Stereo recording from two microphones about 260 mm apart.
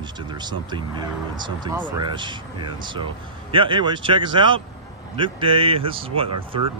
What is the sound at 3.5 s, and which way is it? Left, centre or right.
Speech, centre.